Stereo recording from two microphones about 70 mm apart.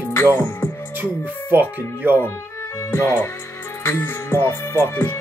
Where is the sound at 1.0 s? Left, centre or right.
Right.